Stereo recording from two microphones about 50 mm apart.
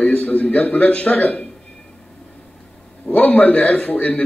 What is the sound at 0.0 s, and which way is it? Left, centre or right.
Speech, left.